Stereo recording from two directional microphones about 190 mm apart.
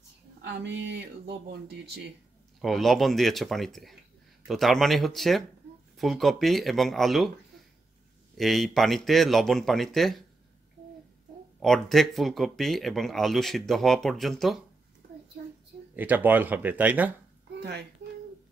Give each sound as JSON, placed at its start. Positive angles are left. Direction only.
{"t": 0.4, "sound": "speech", "side_deg": -60}
{"t": 2.6, "sound": "speech", "side_deg": 0}
{"t": 8.4, "sound": "speech", "side_deg": 0}
{"t": 11.6, "sound": "speech", "side_deg": 0}
{"t": 16.0, "sound": "speech", "side_deg": -10}
{"t": 17.6, "sound": "speech", "side_deg": -60}